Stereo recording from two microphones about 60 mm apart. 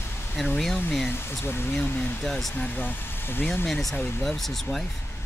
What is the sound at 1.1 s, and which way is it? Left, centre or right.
Speech, left.